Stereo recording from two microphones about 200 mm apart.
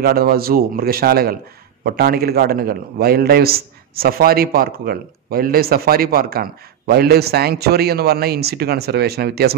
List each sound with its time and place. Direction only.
0.0 s a man's voice: 50° right (ahead or behind)